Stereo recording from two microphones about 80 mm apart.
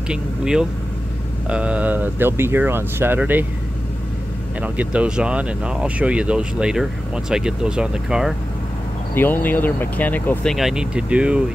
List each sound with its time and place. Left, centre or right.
0.1 s speech: centre
4.6 s speech: centre
9.1 s speech: left
10.4 s speech: centre
10.7 s speech: centre